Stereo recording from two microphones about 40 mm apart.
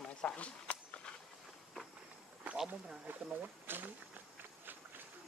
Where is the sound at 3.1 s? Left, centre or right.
Right.